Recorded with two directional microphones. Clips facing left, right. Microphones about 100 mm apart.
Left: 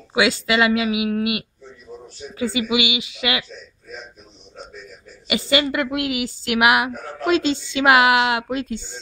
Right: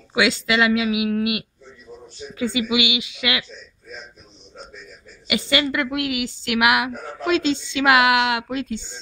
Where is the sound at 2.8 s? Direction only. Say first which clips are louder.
Left 1 dB; 40° left (ahead or behind).